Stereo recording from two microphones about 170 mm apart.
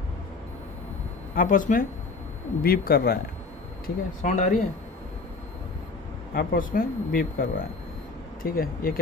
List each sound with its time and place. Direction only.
1.3 s speech: 50° left (ahead or behind)
3.8 s speech: 50° left (ahead or behind)
6.3 s speech: 60° left (ahead or behind)